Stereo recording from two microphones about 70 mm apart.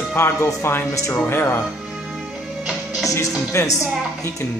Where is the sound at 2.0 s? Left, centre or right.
Centre.